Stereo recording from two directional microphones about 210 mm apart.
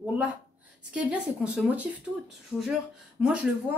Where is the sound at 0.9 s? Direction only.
5° right (ahead or behind).